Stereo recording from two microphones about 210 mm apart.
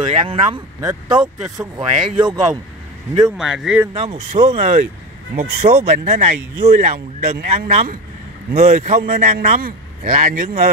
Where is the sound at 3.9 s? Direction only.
30° right (ahead or behind).